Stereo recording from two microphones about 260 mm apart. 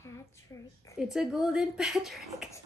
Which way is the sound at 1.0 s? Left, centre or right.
Centre.